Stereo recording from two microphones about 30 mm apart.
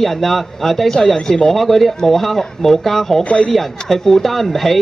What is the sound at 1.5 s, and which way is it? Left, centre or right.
Speech, centre.